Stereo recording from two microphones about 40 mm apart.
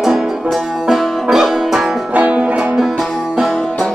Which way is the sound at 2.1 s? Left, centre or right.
Right.